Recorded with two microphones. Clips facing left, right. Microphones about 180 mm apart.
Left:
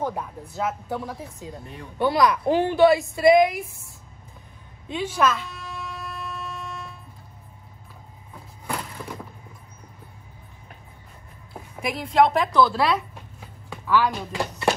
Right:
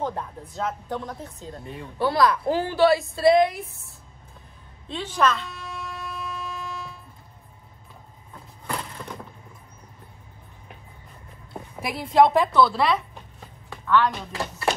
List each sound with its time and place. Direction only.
0.0 s a woman's voice: 10° left (ahead or behind)
2.0 s a woman's voice: 20° left (ahead or behind)
4.8 s shofar: 10° left (ahead or behind)
8.6 s a sound: 5° left (ahead or behind)
11.5 s speech: centre (ahead or behind)